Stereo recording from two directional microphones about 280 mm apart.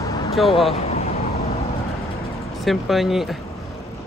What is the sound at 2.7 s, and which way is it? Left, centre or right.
Speech, centre.